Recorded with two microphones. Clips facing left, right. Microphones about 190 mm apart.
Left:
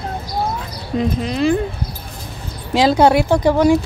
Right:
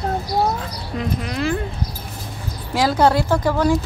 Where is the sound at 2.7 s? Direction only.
20° left (ahead or behind).